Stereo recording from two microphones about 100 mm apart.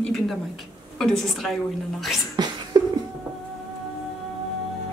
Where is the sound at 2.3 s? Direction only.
45° right (ahead or behind).